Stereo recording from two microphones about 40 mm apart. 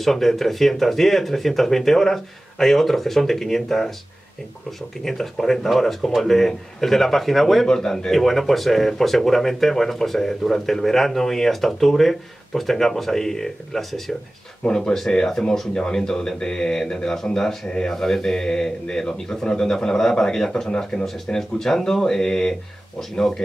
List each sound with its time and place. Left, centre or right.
0.0 s speech: centre
7.6 s speech: centre
8.1 s speech: centre
14.7 s speech: centre